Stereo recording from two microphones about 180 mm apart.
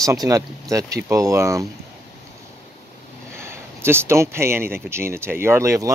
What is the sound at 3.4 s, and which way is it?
Speech, 15° right (ahead or behind).